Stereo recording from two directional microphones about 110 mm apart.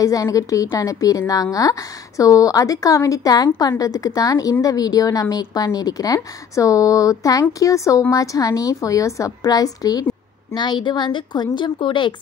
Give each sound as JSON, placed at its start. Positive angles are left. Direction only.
{"t": 0.0, "sound": "a woman's voice", "side_deg": 30}